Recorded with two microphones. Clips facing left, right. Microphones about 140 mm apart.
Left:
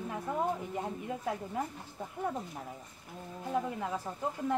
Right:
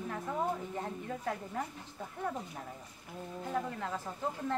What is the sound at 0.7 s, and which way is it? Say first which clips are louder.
Speech: left 2 dB; 10° left (ahead or behind).